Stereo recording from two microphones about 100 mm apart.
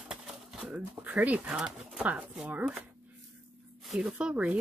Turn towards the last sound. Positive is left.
turn(degrees=-10)  # may be behind; listen again after turning